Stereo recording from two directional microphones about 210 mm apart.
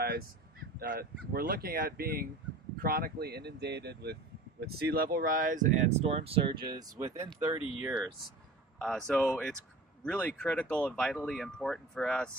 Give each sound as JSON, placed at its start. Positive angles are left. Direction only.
{"t": 0.7, "sound": "speech", "side_deg": -45}
{"t": 7.4, "sound": "speech", "side_deg": -10}
{"t": 8.7, "sound": "speech", "side_deg": 5}